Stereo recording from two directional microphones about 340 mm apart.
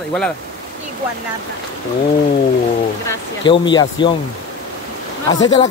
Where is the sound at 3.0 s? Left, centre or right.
Centre.